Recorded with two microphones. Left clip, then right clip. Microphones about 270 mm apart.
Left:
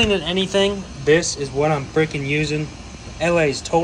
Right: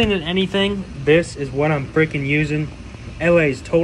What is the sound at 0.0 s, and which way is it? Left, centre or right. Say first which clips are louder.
Speech: even; centre.